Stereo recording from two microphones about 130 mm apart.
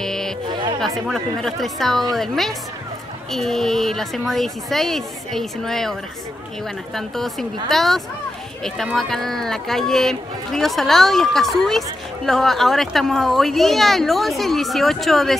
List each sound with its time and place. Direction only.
0.0 s music: 5° left (ahead or behind)
0.5 s music: 40° right (ahead or behind)
0.7 s speech: centre (ahead or behind)
7.0 s speech: centre (ahead or behind)